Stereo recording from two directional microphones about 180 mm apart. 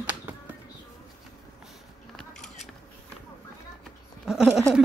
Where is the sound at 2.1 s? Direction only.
Centre (ahead or behind).